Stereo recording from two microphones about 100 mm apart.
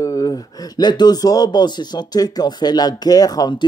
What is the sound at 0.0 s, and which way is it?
Speech, 35° left (ahead or behind).